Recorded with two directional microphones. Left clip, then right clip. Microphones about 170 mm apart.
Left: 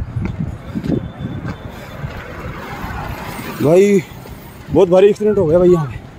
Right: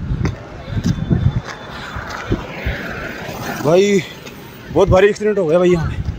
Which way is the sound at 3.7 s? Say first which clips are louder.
Left 2 dB; 50° left (ahead or behind).